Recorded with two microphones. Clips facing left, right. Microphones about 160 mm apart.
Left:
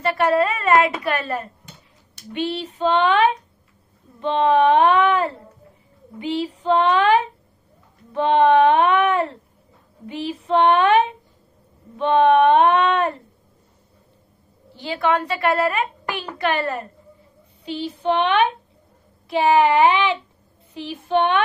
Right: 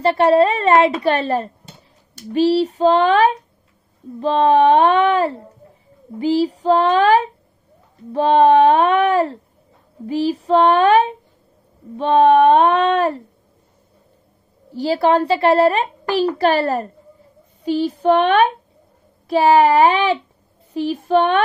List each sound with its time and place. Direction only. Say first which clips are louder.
0.0 s a woman's voice: right 5 dB; 30° right (ahead or behind)
14.7 s a child's voice: right 6 dB; 40° right (ahead or behind)